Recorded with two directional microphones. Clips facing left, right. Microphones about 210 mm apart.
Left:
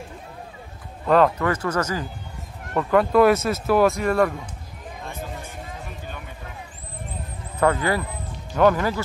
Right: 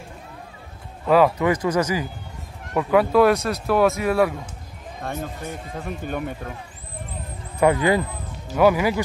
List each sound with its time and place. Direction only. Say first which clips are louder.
1.0 s speech: right 1 dB; 5° right (ahead or behind)
6.0 s speech: right 9 dB; 50° right (ahead or behind)
7.5 s speech: right 3 dB; 15° right (ahead or behind)